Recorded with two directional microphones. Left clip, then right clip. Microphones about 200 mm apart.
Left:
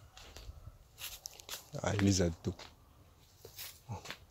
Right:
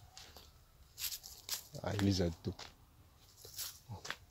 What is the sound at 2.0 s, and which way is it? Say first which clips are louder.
Speech: left 2 dB; 10° left (ahead or behind).